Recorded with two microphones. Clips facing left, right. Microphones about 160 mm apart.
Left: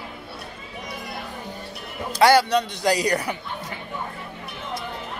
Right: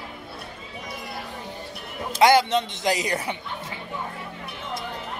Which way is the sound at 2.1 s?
20° right (ahead or behind).